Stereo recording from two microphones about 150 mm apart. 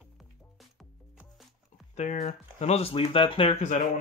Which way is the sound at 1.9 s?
50° left (ahead or behind).